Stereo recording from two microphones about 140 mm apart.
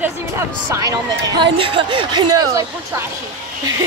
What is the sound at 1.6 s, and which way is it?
Speech, 35° right (ahead or behind).